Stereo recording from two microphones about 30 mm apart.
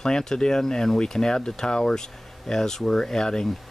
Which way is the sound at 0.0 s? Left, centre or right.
Left.